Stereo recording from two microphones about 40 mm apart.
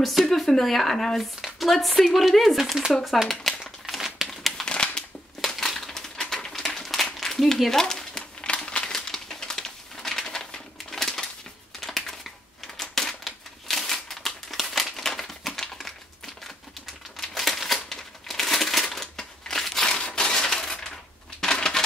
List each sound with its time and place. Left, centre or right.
0.2 s speech: centre
3.5 s a sound: centre
4.3 s crumpling: centre
4.6 s a sound: left
5.8 s typewriter: centre
6.5 s a sound: centre
8.6 s crumpling: left
8.9 s crumpling: centre
10.0 s a sound: centre
12.7 s crushing: centre
17.2 s crumpling: centre
19.9 s crushing: centre